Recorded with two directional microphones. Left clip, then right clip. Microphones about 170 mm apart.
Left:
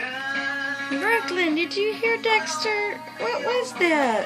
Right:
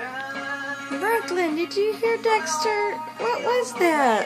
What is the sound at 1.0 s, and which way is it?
A child's voice, 15° right (ahead or behind).